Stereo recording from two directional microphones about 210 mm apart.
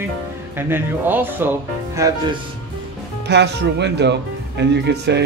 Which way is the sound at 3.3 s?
55° right (ahead or behind).